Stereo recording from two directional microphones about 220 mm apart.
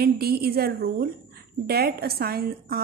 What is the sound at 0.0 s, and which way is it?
A woman's voice, 45° right (ahead or behind).